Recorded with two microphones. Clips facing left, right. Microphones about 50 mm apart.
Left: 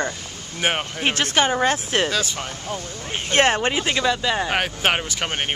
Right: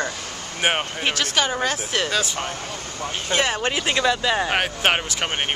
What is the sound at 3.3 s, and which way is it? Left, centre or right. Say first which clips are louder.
Speech: left 5 dB; left.